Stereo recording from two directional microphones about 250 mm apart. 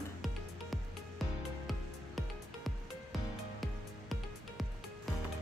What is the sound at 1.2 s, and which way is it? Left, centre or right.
Music, centre.